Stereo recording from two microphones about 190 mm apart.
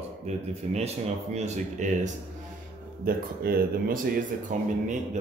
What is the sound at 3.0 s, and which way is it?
Speech, 50° right (ahead or behind).